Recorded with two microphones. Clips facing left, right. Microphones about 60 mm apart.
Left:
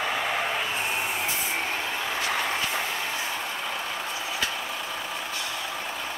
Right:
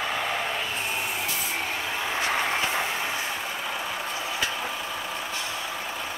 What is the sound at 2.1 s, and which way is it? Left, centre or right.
Vehicle, centre.